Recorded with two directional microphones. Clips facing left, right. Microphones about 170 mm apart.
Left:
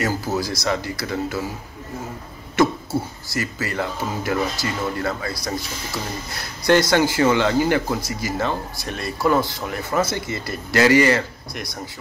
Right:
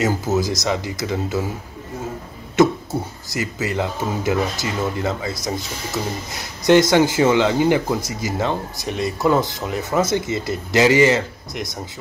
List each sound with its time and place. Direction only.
0.0 s speech: 20° right (ahead or behind)
2.5 s speech: 20° right (ahead or behind)
6.6 s speech: 20° right (ahead or behind)